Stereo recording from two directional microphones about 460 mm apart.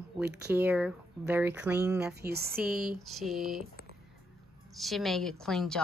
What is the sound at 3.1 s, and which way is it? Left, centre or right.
Speech, centre.